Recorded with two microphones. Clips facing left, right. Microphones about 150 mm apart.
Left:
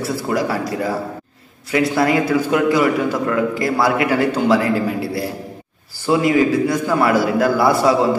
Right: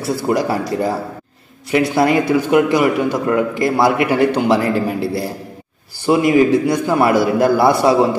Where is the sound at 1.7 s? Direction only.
25° right (ahead or behind).